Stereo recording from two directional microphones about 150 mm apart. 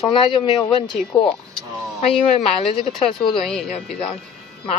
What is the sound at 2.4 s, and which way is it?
Speech, 40° left (ahead or behind).